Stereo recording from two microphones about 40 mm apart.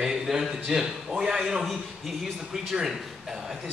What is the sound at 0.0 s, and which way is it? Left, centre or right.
Speech, centre.